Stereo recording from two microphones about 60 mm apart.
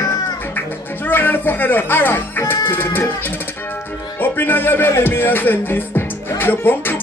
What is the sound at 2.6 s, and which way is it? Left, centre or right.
Music, left.